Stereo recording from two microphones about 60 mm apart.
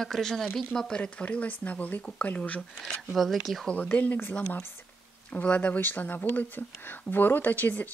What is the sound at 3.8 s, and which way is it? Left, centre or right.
Speech, left.